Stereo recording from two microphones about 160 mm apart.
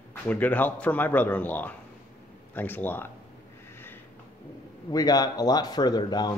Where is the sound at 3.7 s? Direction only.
15° left (ahead or behind).